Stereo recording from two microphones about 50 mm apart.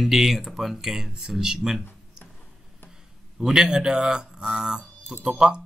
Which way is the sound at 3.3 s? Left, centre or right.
Centre.